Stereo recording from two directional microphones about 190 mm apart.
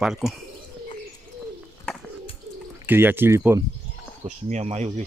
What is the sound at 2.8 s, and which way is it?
Speech, 10° right (ahead or behind).